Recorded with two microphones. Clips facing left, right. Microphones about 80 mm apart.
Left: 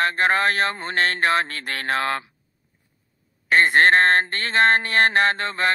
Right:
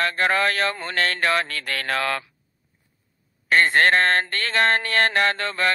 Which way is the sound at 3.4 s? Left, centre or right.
Left.